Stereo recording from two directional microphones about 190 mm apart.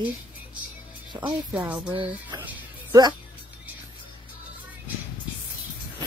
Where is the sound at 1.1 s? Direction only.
25° right (ahead or behind).